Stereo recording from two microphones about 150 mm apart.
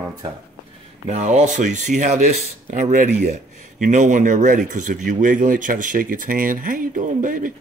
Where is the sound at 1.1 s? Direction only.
55° right (ahead or behind).